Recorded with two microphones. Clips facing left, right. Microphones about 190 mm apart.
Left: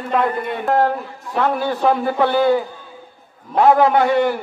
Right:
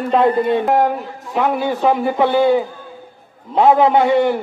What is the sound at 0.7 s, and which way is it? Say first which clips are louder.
A man's voice: right 1 dB; 15° right (ahead or behind).